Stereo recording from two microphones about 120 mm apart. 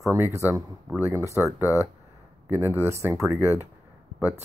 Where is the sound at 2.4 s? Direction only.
20° right (ahead or behind).